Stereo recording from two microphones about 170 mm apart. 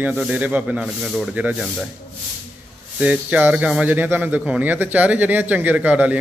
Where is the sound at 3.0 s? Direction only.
10° right (ahead or behind).